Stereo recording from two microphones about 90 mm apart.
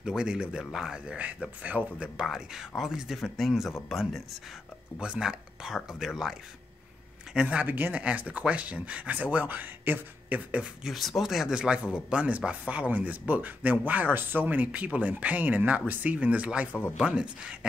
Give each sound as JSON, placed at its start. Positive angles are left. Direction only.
{"t": 0.0, "sound": "speech", "side_deg": -10}
{"t": 7.3, "sound": "speech", "side_deg": -15}